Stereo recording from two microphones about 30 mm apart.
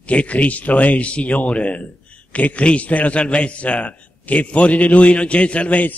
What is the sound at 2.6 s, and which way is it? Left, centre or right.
Speech, left.